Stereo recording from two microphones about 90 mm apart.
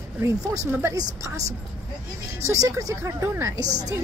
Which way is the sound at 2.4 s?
35° right (ahead or behind).